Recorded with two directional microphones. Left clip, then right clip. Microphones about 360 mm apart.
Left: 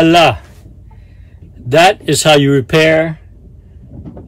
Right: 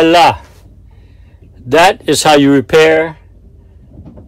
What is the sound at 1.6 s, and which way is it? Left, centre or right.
Speech, centre.